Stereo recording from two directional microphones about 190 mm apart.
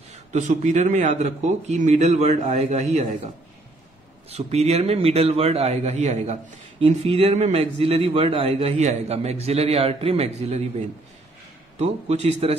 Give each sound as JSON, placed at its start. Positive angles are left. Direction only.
{"t": 0.1, "sound": "a man's voice", "side_deg": -40}
{"t": 4.3, "sound": "a man's voice", "side_deg": -35}
{"t": 11.8, "sound": "a man's voice", "side_deg": -35}